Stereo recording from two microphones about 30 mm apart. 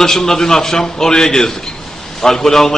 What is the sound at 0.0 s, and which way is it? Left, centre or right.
A man's voice, centre.